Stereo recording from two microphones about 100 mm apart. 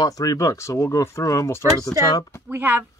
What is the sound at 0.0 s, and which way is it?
Speech, 40° left (ahead or behind).